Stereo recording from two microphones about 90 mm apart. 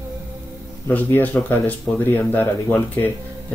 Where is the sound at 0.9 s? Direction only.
20° left (ahead or behind).